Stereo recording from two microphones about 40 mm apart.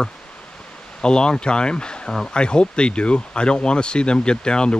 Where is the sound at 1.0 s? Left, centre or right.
Left.